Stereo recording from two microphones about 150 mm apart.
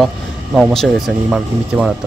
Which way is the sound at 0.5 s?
Centre (ahead or behind).